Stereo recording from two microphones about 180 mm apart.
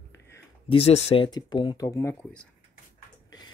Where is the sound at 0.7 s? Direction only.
35° left (ahead or behind).